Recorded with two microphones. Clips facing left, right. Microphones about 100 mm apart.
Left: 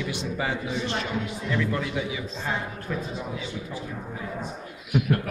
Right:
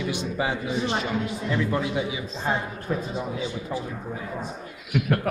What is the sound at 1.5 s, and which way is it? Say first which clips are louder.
Speech: right 2 dB; 20° right (ahead or behind).